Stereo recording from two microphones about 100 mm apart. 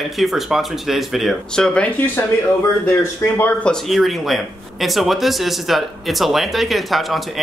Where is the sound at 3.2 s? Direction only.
25° left (ahead or behind).